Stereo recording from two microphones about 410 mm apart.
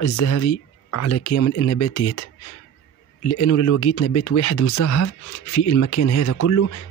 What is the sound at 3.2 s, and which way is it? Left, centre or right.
Speech, left.